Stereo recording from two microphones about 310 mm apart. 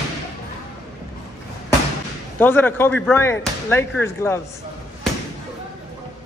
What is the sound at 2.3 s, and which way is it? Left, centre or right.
Speech, centre.